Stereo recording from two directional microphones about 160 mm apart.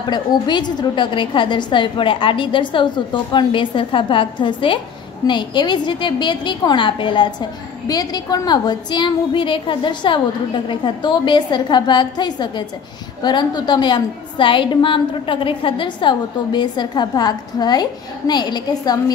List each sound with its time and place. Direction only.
0.0 s a woman's voice: 25° left (ahead or behind)